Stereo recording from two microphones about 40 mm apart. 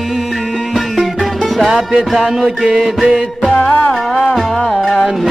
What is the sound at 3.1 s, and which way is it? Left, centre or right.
Music, right.